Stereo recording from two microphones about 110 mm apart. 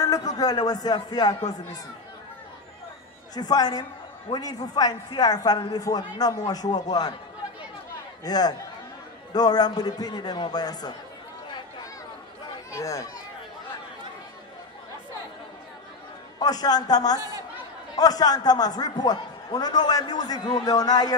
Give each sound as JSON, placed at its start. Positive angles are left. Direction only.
{"t": 0.0, "sound": "a man's voice", "side_deg": 35}
{"t": 3.3, "sound": "a man's voice", "side_deg": 35}
{"t": 8.2, "sound": "a man's voice", "side_deg": 35}
{"t": 12.7, "sound": "speech", "side_deg": 30}
{"t": 16.3, "sound": "a man's voice", "side_deg": 35}